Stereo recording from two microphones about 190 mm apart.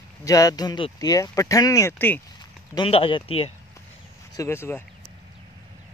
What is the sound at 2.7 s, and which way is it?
Speech, 30° left (ahead or behind).